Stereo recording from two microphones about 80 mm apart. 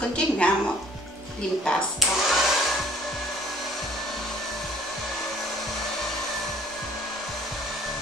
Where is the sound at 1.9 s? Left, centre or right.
Centre.